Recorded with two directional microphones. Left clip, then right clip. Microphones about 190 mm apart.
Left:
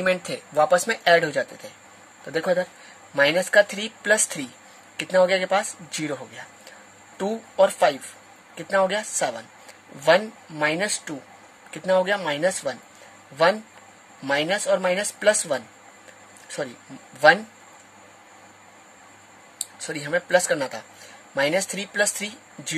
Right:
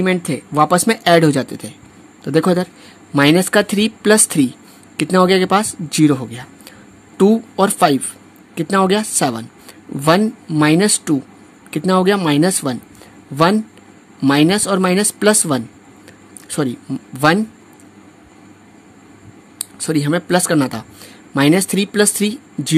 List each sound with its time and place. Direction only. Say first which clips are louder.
0.0 s speech: right 5 dB; 35° right (ahead or behind); by 12.7 s 55° right (ahead or behind)
14.2 s speech: right 8 dB; 55° right (ahead or behind)
19.9 s speech: right 5 dB; 50° right (ahead or behind)